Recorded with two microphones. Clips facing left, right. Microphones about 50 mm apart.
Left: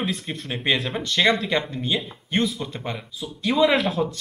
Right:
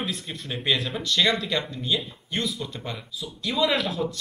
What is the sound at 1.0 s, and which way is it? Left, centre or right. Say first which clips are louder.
Speech: left 4 dB; left.